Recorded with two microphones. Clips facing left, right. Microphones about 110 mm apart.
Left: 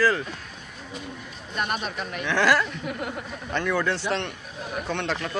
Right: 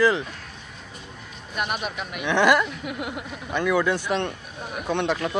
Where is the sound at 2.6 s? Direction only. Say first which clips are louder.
Even; 5° right (ahead or behind).